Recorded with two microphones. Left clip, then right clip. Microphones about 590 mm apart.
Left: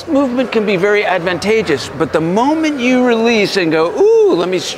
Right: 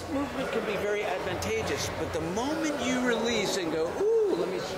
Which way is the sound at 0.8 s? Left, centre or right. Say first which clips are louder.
Left 17 dB; left.